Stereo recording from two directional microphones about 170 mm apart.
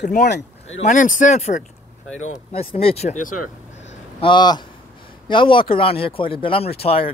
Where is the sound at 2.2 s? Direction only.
35° left (ahead or behind).